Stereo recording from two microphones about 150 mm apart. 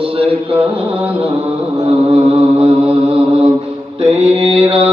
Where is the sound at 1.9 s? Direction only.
40° right (ahead or behind).